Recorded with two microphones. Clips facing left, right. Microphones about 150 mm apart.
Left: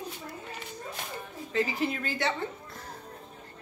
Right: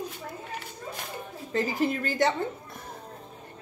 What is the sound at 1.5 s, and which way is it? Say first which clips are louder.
Speech: right 3 dB; 45° right (ahead or behind).